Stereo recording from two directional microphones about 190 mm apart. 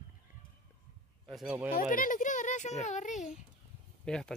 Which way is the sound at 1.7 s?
45° left (ahead or behind).